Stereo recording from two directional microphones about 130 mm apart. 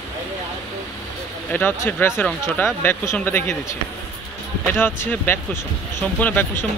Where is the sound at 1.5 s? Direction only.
15° left (ahead or behind).